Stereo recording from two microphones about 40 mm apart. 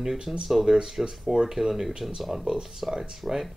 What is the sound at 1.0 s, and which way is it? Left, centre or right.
Speech, centre.